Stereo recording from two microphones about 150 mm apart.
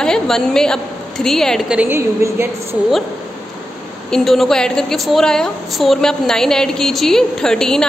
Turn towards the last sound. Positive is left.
turn(degrees=5)  # may be behind; listen again after turning